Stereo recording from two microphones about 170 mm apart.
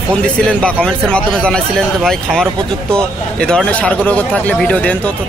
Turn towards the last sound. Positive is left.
turn(degrees=10)  # may be behind; listen again after turning